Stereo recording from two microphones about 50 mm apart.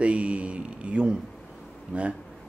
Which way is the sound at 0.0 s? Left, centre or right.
Right.